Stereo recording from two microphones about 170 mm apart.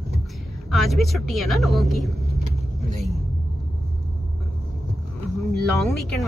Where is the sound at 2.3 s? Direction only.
40° right (ahead or behind).